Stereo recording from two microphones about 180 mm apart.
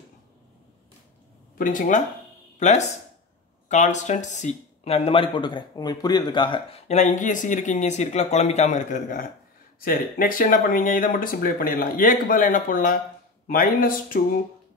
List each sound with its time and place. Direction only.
1.6 s speech: 45° left (ahead or behind)